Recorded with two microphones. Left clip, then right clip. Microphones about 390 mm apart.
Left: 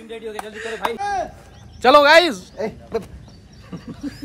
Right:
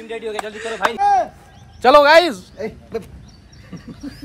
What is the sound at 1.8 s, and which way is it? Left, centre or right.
Speech, centre.